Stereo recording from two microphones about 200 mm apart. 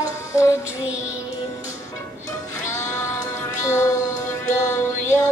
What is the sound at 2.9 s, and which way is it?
Music, 15° left (ahead or behind).